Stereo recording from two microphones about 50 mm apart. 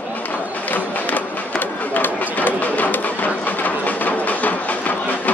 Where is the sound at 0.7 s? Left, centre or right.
Left.